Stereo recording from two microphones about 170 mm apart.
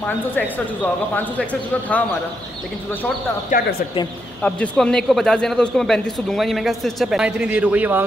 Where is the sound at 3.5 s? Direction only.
50° left (ahead or behind).